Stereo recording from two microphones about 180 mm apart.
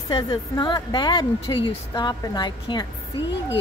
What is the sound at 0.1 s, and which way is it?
A woman's voice, 25° left (ahead or behind).